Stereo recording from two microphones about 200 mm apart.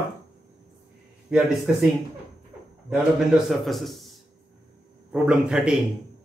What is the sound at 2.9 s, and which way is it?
Speech, centre (ahead or behind).